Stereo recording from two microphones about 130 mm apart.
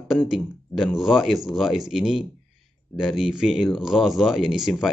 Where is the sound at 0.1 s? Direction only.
5° right (ahead or behind).